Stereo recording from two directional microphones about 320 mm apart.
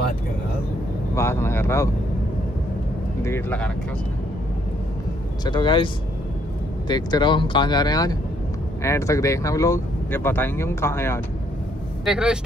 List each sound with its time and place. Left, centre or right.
1.1 s speech: centre
3.2 s speech: centre
5.4 s speech: centre
6.9 s speech: centre
12.0 s speech: centre